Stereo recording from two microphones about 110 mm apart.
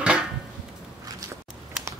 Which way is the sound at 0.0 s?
10° right (ahead or behind).